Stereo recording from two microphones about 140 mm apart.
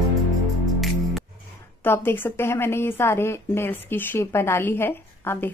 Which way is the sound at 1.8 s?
15° left (ahead or behind).